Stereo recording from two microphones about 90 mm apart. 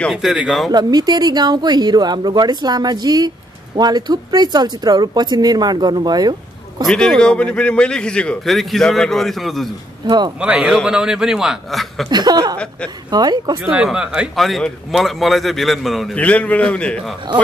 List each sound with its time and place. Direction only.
0.1 s a man's voice: centre (ahead or behind)
0.7 s speech: 45° right (ahead or behind)
6.9 s a man's voice: 5° left (ahead or behind)
8.5 s a man's voice: centre (ahead or behind)
10.0 s speech: 55° right (ahead or behind)
10.4 s a man's voice: 10° right (ahead or behind)
12.1 s speech: 50° right (ahead or behind)
13.8 s a man's voice: 10° right (ahead or behind)
14.3 s a man's voice: centre (ahead or behind)
16.2 s a man's voice: 15° left (ahead or behind)